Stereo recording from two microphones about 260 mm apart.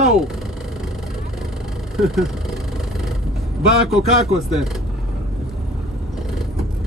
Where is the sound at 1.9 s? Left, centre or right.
Centre.